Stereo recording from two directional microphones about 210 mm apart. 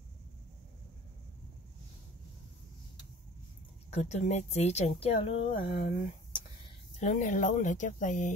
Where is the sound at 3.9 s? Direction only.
30° left (ahead or behind).